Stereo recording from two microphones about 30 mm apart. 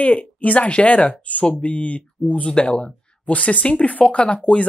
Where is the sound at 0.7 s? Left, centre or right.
Left.